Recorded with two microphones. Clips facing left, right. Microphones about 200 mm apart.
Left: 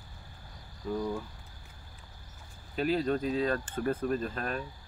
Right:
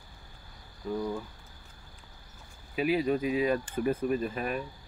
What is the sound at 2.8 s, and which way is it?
Speech, 10° right (ahead or behind).